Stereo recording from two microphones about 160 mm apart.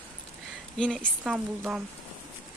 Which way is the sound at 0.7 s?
5° left (ahead or behind).